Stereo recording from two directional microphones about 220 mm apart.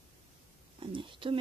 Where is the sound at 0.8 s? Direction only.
20° right (ahead or behind).